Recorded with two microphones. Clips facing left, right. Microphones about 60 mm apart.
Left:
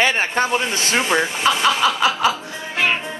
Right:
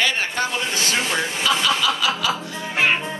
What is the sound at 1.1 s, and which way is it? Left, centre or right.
Speech, left.